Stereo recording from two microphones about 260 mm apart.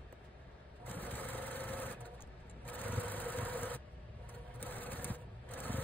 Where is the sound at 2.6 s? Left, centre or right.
Centre.